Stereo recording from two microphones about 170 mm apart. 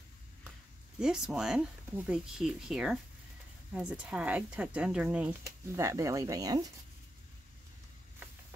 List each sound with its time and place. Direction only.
0.9 s speech: 5° right (ahead or behind); by 6.7 s 20° right (ahead or behind)